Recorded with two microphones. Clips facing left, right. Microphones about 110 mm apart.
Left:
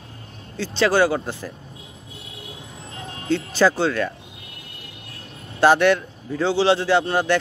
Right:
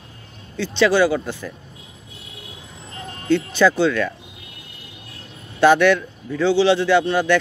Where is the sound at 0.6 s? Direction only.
35° left (ahead or behind).